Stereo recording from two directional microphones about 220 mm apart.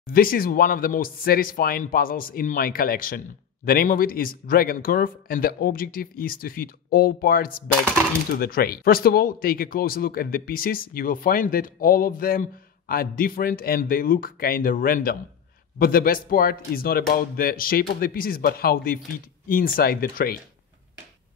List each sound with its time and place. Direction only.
0.0 s speech: 40° left (ahead or behind)